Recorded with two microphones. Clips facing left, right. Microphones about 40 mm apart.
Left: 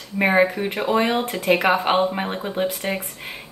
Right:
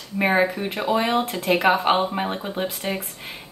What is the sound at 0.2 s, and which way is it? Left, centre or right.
Speech, centre.